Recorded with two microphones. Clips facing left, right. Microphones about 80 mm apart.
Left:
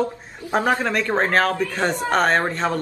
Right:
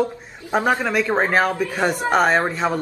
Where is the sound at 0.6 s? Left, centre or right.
Centre.